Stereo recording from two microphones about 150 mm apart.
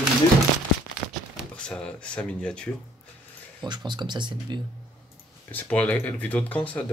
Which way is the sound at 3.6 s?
30° right (ahead or behind).